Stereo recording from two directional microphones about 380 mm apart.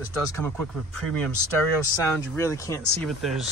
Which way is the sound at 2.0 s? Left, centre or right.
Centre.